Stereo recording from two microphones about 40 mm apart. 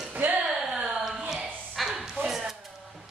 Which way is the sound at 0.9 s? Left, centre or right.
Centre.